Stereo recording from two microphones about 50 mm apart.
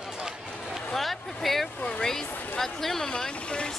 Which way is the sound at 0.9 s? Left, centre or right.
Centre.